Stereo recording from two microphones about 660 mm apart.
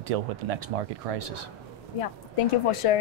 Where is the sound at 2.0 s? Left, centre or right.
Left.